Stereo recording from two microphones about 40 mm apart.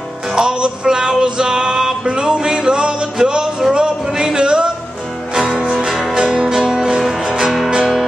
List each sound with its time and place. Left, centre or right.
0.3 s music: centre
5.3 s music: centre